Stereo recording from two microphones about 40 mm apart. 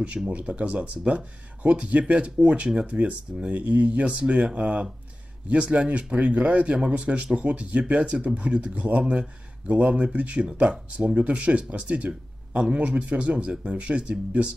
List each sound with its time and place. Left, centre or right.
0.3 s speech: right
12.1 s a sound: right
12.7 s speech: right